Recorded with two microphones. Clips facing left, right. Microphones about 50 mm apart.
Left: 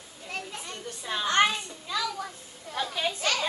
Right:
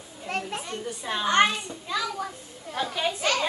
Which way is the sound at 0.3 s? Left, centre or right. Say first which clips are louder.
Right 6 dB; right.